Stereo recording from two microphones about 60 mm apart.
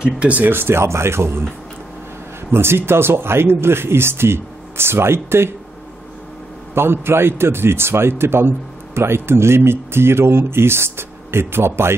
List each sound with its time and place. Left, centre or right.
0.0 s speech: centre
0.4 s speech: right
2.5 s speech: right
6.7 s speech: right